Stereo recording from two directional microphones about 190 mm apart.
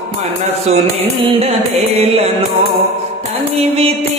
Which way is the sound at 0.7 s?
35° right (ahead or behind).